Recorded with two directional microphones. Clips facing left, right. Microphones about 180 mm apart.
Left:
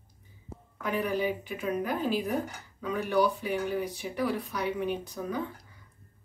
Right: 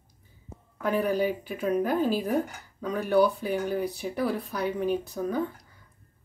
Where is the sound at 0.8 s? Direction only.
40° right (ahead or behind).